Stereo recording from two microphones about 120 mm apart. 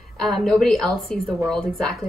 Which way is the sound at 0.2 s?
5° left (ahead or behind).